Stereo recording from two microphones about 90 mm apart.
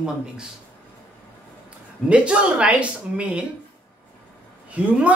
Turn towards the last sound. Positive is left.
turn(degrees=-15)  # may be behind; listen again after turning